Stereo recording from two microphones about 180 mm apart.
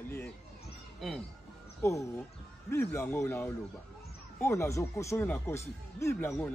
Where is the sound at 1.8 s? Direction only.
15° left (ahead or behind).